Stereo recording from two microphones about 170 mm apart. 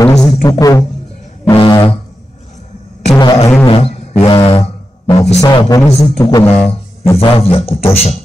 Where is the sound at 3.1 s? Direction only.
20° left (ahead or behind).